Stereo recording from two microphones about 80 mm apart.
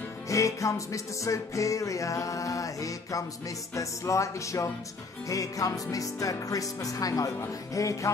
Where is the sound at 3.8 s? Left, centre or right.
Left.